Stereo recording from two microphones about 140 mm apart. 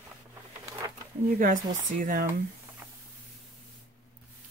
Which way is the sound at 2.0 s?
70° right (ahead or behind).